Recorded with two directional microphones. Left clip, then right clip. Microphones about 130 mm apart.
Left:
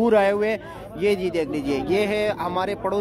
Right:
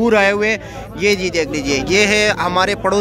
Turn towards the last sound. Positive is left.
turn(degrees=5)  # may be behind; listen again after turning